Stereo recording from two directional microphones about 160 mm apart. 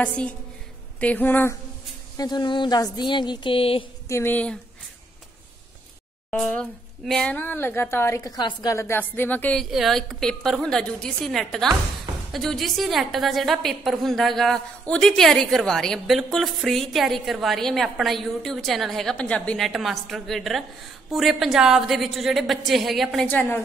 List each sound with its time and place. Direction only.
0.0 s speech: 10° left (ahead or behind)
2.1 s speech: 25° left (ahead or behind)
4.1 s speech: 15° left (ahead or behind)
6.3 s a woman's voice: 5° left (ahead or behind)
23.2 s speech: 10° left (ahead or behind)